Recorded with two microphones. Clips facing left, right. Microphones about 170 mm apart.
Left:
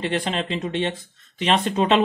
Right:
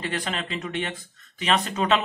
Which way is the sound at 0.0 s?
30° left (ahead or behind).